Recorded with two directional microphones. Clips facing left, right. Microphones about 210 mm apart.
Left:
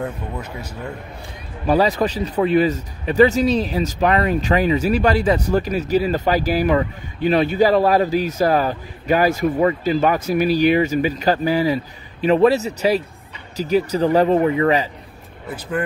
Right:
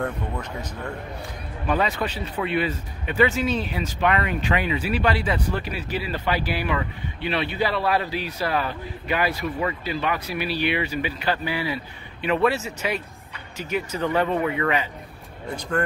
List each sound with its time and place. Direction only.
0.0 s speech: 10° left (ahead or behind)
1.7 s speech: 35° left (ahead or behind)
15.4 s speech: 5° left (ahead or behind)